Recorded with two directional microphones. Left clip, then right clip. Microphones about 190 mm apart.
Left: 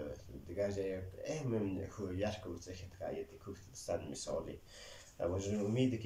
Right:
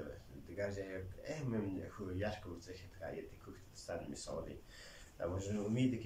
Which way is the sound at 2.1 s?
15° left (ahead or behind).